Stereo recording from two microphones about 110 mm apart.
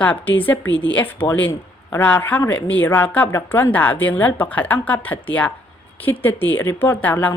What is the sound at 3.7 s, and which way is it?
A woman's voice, 15° left (ahead or behind).